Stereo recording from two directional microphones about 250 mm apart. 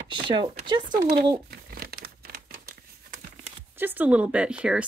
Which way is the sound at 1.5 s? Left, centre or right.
Right.